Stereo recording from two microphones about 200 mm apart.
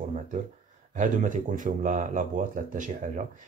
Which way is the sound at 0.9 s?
40° right (ahead or behind).